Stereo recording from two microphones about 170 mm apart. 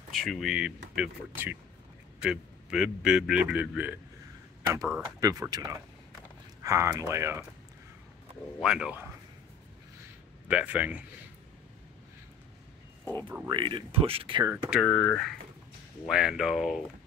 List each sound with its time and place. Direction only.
0.1 s a man's voice: centre (ahead or behind)
5.2 s speech: 20° right (ahead or behind)
8.5 s a man's voice: 5° right (ahead or behind)
10.5 s speech: 10° right (ahead or behind)
13.5 s speech: 30° right (ahead or behind)
14.7 s a man's voice: 5° left (ahead or behind)